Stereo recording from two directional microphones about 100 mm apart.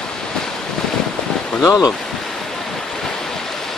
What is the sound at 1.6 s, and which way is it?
Speech, 40° left (ahead or behind).